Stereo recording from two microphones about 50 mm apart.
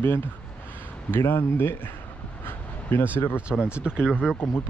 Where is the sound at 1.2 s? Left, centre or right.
Left.